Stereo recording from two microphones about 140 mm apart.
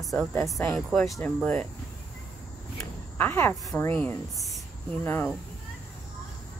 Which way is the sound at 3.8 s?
15° left (ahead or behind).